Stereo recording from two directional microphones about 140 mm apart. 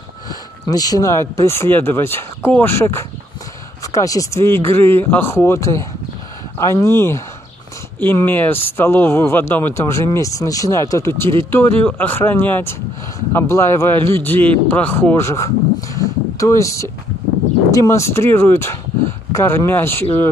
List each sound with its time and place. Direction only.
0.3 s speech: 25° left (ahead or behind)